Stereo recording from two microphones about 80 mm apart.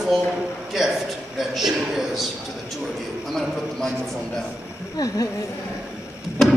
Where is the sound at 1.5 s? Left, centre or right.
Centre.